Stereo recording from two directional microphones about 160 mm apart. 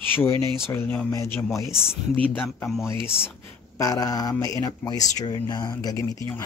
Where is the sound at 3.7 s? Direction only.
20° left (ahead or behind).